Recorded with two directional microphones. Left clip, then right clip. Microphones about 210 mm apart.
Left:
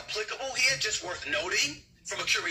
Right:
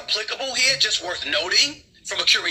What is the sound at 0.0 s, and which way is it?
Speech, 40° right (ahead or behind).